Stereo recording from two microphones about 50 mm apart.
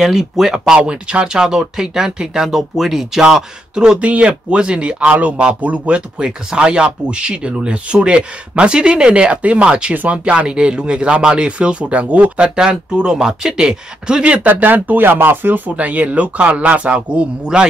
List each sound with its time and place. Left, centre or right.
0.0 s speech: centre
0.7 s speech: right
4.0 s speech: right
5.9 s speech: centre
12.4 s speech: centre
14.2 s speech: right
14.5 s speech: right; by 17.7 s centre